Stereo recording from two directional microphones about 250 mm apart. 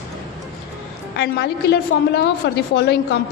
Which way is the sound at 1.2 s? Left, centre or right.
Left.